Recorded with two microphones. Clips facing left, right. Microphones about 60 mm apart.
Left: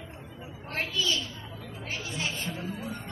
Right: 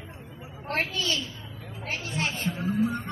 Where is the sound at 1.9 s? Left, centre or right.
Right.